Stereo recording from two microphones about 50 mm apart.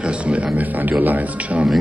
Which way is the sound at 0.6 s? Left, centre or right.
Right.